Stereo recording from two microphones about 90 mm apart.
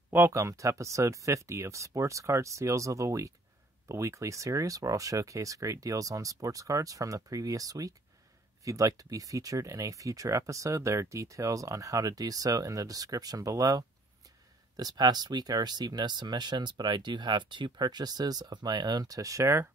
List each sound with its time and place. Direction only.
0.1 s speech: 30° right (ahead or behind)